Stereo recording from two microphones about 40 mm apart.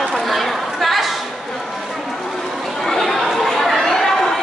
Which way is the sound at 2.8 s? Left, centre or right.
Centre.